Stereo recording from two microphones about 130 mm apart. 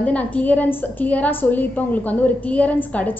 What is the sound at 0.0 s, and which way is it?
A woman's voice, 10° left (ahead or behind).